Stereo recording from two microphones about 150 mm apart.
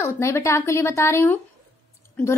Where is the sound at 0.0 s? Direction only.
20° left (ahead or behind).